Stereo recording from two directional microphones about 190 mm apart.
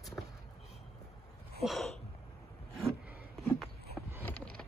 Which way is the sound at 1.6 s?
Centre (ahead or behind).